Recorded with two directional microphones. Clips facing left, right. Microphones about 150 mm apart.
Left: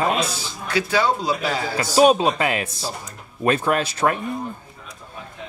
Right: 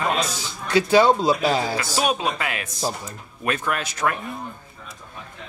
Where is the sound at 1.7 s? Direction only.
30° left (ahead or behind).